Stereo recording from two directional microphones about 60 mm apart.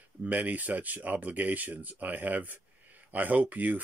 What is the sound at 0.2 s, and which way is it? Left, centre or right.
Speech, right.